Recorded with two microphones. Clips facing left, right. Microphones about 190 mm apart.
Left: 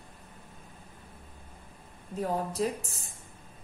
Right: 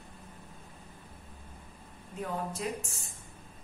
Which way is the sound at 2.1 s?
35° left (ahead or behind).